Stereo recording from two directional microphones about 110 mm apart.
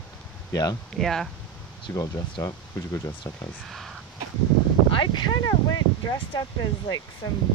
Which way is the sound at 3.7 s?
Centre (ahead or behind).